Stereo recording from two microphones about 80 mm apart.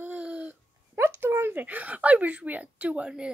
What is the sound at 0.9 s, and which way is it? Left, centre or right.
Speech, right.